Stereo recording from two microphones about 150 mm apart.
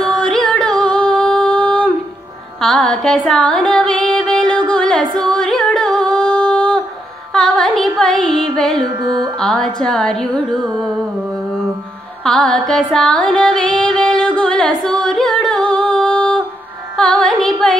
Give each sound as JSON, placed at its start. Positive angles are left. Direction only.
{"t": 0.2, "sound": "singing", "side_deg": 5}
{"t": 2.6, "sound": "music", "side_deg": 5}
{"t": 5.2, "sound": "singing", "side_deg": 5}
{"t": 7.3, "sound": "music", "side_deg": 0}
{"t": 9.0, "sound": "music", "side_deg": -25}
{"t": 9.4, "sound": "music", "side_deg": 5}
{"t": 12.2, "sound": "music", "side_deg": 5}
{"t": 14.8, "sound": "singing", "side_deg": 5}
{"t": 16.9, "sound": "carnatic music", "side_deg": 5}